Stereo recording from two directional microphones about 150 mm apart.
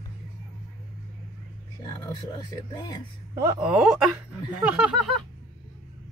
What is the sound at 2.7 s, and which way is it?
Speech, 25° left (ahead or behind).